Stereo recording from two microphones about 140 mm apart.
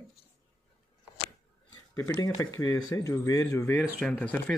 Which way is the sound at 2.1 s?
20° left (ahead or behind).